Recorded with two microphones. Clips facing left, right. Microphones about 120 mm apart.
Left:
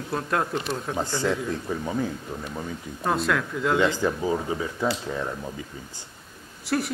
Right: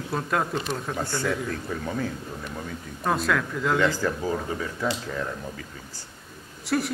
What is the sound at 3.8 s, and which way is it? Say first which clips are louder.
Speech: left 1 dB; 15° left (ahead or behind).